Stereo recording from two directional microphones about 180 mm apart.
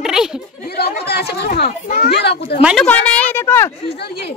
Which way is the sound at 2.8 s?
10° left (ahead or behind).